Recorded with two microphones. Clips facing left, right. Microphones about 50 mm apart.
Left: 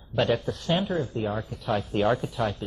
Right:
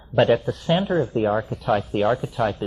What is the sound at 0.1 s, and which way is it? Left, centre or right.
Speech, right.